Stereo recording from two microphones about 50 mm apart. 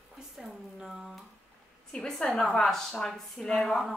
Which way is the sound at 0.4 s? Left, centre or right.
Centre.